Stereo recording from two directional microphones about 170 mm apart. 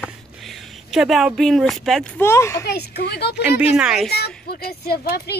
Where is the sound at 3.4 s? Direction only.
5° right (ahead or behind).